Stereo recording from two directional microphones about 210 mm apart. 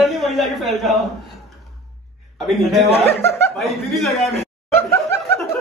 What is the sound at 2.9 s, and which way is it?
Speech, 10° left (ahead or behind).